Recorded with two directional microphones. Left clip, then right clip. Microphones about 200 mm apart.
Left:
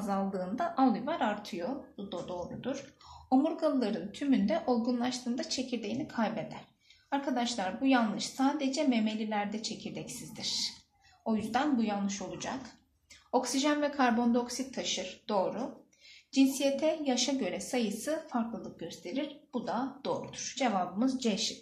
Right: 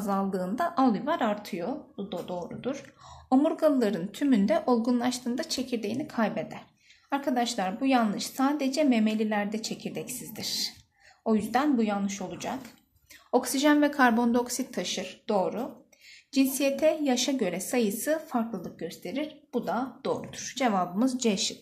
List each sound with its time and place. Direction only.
0.0 s a woman's voice: 40° right (ahead or behind)